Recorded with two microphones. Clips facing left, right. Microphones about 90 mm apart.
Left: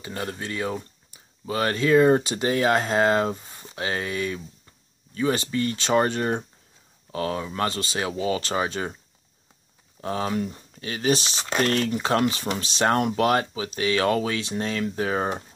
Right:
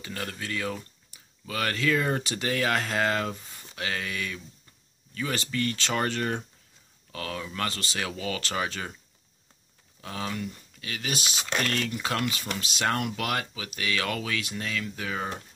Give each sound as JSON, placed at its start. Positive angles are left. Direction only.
{"t": 0.0, "sound": "speech", "side_deg": 25}
{"t": 10.0, "sound": "speech", "side_deg": 35}